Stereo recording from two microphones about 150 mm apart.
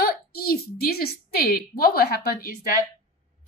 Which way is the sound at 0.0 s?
90° left.